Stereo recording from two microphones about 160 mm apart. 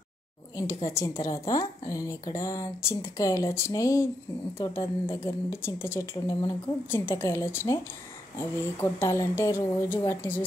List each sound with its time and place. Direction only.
0.8 s a woman's voice: 20° left (ahead or behind)